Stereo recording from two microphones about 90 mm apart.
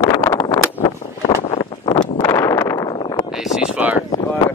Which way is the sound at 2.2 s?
35° left (ahead or behind).